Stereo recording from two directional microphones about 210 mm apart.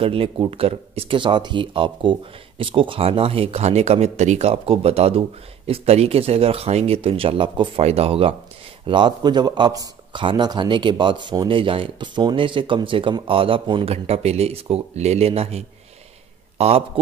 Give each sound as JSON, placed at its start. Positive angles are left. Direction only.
{"t": 0.0, "sound": "speech", "side_deg": -25}